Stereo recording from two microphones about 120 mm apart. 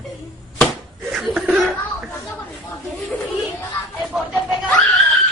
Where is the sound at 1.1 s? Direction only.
5° right (ahead or behind).